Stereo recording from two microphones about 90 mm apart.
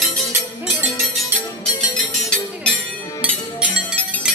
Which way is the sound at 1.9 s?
10° left (ahead or behind).